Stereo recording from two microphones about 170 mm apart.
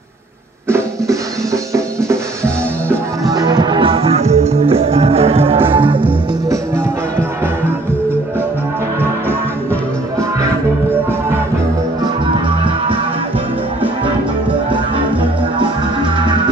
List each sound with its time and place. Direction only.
0.7 s drum: 15° right (ahead or behind)
1.7 s music: 15° right (ahead or behind); by 5.6 s 35° right (ahead or behind)
5.9 s music: 10° right (ahead or behind)